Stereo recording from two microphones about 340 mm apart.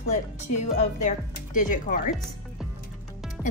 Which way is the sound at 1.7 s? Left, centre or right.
Left.